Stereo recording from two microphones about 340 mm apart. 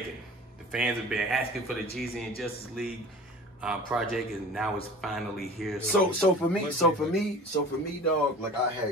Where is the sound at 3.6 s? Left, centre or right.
Centre.